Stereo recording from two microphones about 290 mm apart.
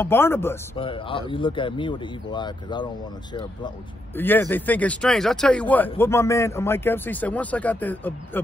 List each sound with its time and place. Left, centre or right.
0.0 s speech: centre
4.2 s speech: centre